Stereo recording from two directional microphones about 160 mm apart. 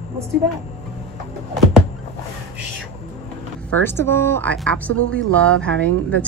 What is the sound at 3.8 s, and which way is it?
Speech, 15° left (ahead or behind).